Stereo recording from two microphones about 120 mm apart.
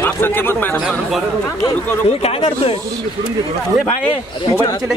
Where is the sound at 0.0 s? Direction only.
15° left (ahead or behind).